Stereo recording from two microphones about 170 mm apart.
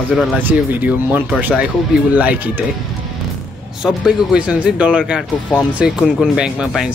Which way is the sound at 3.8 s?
5° right (ahead or behind).